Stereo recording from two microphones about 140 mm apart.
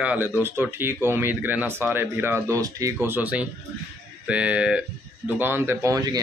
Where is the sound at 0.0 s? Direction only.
10° right (ahead or behind).